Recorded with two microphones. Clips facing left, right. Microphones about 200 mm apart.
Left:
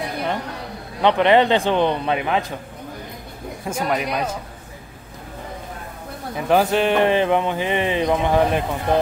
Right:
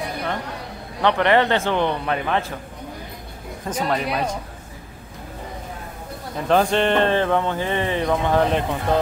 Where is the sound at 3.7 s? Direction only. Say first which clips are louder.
Even; 10° left (ahead or behind).